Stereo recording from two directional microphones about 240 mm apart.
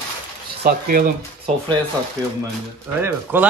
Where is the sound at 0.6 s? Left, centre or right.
Right.